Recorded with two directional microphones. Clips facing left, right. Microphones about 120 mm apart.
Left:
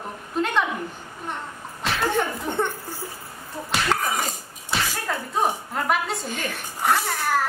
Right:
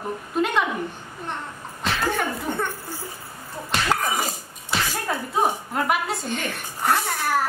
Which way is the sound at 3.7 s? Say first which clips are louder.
Right 1 dB; centre (ahead or behind).